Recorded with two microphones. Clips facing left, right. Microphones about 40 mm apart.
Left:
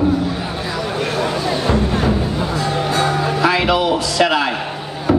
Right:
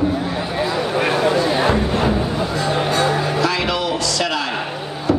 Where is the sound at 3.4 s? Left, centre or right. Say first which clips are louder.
Left 4 dB; centre.